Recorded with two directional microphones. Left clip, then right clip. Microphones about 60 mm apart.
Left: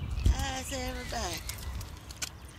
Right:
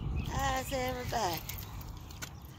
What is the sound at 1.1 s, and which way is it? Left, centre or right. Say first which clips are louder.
Speech: right 3 dB; left.